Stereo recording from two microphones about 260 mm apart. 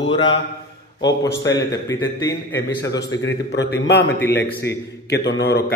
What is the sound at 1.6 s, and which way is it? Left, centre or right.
Speech, centre.